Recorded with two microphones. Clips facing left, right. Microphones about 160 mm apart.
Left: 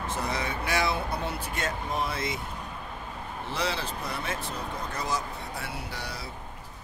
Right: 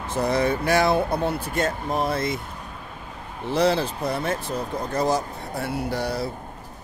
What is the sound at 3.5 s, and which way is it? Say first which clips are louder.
Speech: right 11 dB; 45° right (ahead or behind).